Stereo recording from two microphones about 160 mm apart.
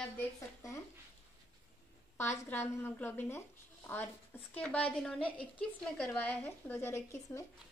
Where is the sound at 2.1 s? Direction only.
15° left (ahead or behind).